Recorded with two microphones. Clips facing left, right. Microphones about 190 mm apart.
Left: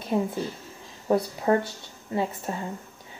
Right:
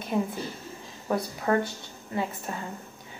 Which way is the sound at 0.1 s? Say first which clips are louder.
Left 2 dB; 25° left (ahead or behind).